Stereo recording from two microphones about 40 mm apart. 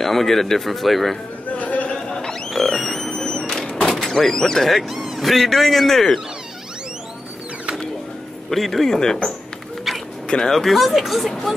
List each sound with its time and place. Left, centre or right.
0.0 s speech: centre
1.5 s a sound: left
1.9 s a sound: centre
2.5 s a sound: centre
4.6 s speech: centre
8.5 s speech: centre
9.9 s bow-wow: centre
10.2 s speech: left
10.5 s speech: centre